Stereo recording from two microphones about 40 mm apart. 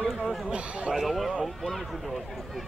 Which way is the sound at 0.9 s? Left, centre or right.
Centre.